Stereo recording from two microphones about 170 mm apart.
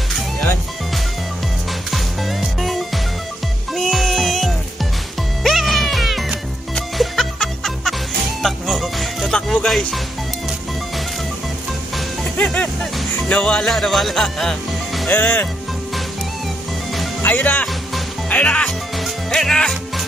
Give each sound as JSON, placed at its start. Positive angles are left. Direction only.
{"t": 1.9, "sound": "music", "side_deg": 0}
{"t": 12.2, "sound": "music", "side_deg": 5}
{"t": 13.3, "sound": "speech", "side_deg": 5}
{"t": 17.2, "sound": "music", "side_deg": 10}